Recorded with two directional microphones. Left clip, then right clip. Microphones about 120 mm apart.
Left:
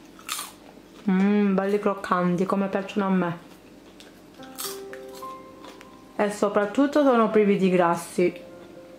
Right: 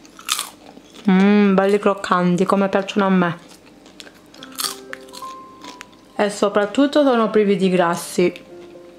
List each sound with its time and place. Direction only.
0.3 s biting: 30° right (ahead or behind)
1.0 s a woman's voice: 35° right (ahead or behind)
4.9 s music: 35° right (ahead or behind)
5.8 s speech: 30° right (ahead or behind)